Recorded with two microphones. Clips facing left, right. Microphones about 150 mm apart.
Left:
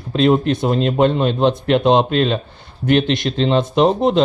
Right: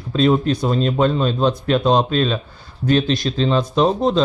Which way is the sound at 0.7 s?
55° left (ahead or behind).